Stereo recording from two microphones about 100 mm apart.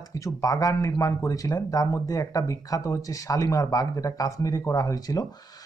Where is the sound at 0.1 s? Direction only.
35° left (ahead or behind).